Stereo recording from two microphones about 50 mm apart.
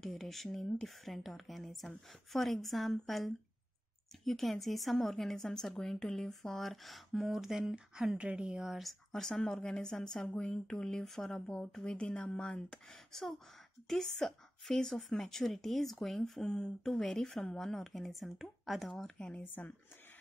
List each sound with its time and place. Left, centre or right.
0.0 s speech: centre
9.1 s speech: centre
11.3 s speech: left
19.3 s speech: left